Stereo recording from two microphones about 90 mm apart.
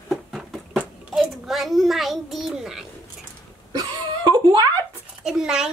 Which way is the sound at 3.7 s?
60° right (ahead or behind).